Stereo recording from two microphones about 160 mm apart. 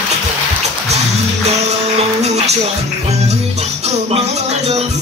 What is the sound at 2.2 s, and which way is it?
Music, 40° right (ahead or behind).